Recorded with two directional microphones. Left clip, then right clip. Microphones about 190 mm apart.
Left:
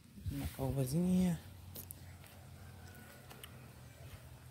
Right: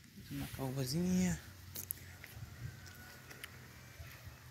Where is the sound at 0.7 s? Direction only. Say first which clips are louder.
Left 1 dB; 20° left (ahead or behind).